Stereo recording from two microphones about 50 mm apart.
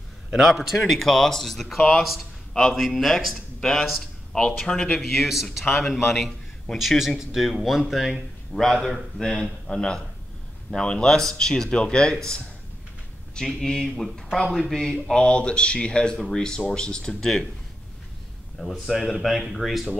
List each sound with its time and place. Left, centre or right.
0.3 s a man's voice: centre
0.7 s speech: centre
1.8 s speech: centre
2.7 s speech: centre
5.1 s speech: centre
5.7 s a man's voice: centre
8.8 s speech: centre
13.5 s speech: centre
18.6 s speech: centre